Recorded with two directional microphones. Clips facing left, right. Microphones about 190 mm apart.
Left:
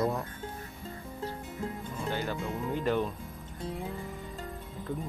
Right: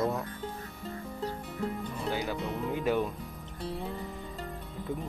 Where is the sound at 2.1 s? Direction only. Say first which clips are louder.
Right 1 dB; 10° right (ahead or behind).